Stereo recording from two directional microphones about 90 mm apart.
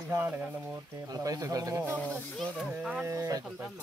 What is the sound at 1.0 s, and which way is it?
Speech, 40° right (ahead or behind).